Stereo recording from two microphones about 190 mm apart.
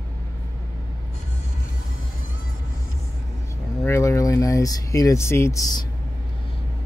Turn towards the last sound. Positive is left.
turn(degrees=20)  # may be behind; listen again after turning